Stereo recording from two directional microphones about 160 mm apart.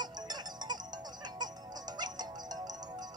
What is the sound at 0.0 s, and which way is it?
Music, 25° right (ahead or behind).